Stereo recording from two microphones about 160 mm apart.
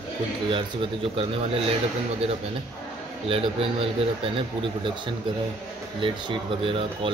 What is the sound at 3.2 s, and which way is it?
Speech, 35° right (ahead or behind).